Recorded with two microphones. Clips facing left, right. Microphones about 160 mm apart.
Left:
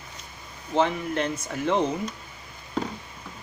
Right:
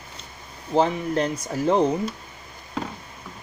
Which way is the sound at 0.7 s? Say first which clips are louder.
Right 3 dB; 35° right (ahead or behind).